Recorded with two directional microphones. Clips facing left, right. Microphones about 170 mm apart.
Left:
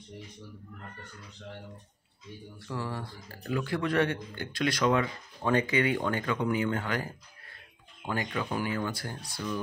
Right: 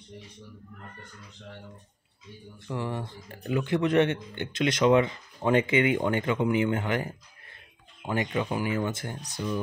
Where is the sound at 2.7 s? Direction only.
20° right (ahead or behind).